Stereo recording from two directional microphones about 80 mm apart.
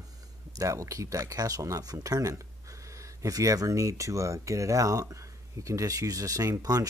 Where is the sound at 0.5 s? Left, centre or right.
Right.